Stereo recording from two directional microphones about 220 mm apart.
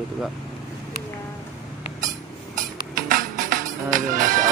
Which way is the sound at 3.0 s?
40° right (ahead or behind).